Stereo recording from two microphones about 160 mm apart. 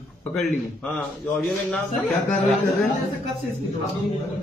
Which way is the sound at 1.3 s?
5° left (ahead or behind).